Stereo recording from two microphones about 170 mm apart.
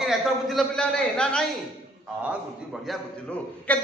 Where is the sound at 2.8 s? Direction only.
5° left (ahead or behind).